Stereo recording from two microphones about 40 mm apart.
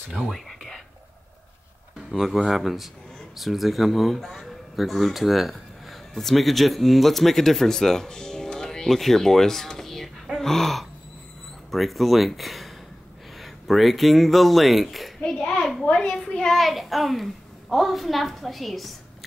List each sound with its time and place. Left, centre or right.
0.3 s whispering: centre
2.0 s a child's voice: centre
10.4 s a sound: centre
11.7 s a child's voice: centre
15.1 s a sound: centre
16.5 s a child's voice: centre